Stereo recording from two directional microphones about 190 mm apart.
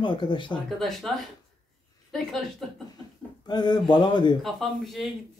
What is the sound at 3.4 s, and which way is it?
Speech, 20° left (ahead or behind).